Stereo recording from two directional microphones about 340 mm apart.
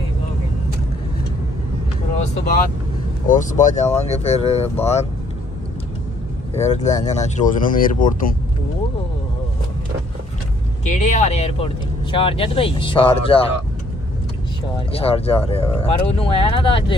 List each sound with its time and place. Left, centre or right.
3.3 s speech: left
6.5 s speech: centre
10.9 s speech: left
14.9 s speech: centre